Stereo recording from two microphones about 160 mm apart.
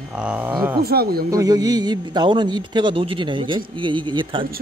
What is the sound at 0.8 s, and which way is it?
Speech, 75° right (ahead or behind).